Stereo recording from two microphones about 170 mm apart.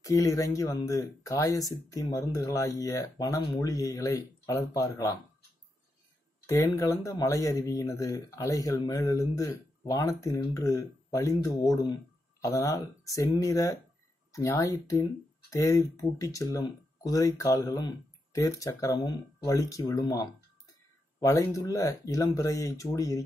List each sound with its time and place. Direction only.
0.0 s speech: 20° left (ahead or behind)
6.4 s speech: 20° left (ahead or behind)